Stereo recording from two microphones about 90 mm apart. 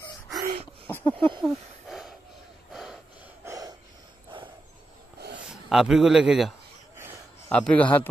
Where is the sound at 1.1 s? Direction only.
70° right (ahead or behind).